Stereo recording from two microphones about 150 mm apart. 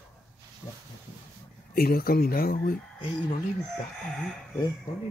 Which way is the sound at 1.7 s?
80° left.